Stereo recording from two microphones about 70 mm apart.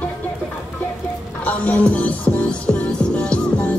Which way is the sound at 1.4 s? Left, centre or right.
Centre.